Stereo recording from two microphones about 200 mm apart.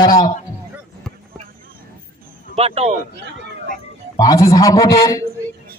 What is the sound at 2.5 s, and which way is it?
Speech, 30° right (ahead or behind).